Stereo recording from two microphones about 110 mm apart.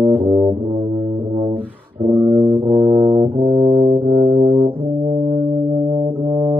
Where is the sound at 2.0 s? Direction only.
15° right (ahead or behind).